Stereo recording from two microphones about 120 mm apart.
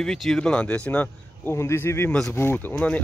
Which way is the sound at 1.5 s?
20° left (ahead or behind).